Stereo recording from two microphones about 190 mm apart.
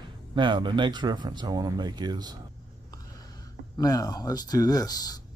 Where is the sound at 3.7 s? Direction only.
20° left (ahead or behind).